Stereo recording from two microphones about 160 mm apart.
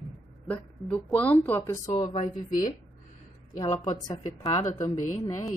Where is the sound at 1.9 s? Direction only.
45° left (ahead or behind).